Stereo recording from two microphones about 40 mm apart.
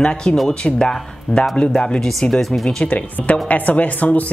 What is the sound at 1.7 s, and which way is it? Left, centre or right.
Speech, centre.